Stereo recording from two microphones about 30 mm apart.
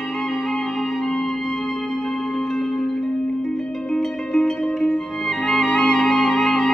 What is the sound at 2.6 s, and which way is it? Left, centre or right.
Music, centre.